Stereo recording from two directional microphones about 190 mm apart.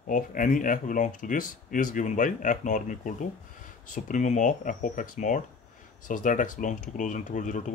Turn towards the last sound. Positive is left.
turn(degrees=40)  # may be behind; listen again after turning